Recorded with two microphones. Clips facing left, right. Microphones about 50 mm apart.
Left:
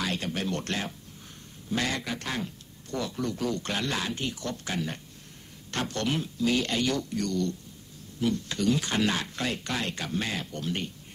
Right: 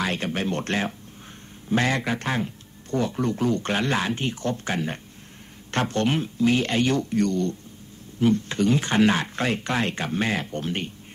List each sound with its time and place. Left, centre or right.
0.0 s a man's voice: right